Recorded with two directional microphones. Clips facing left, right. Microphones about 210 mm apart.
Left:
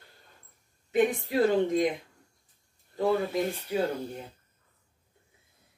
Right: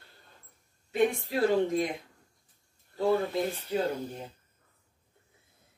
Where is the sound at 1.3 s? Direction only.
20° left (ahead or behind).